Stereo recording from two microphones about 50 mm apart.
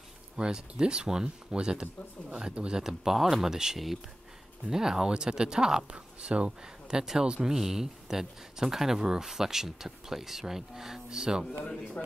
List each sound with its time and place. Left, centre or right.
0.4 s speech: centre
2.8 s speech: centre
11.6 s a man's voice: left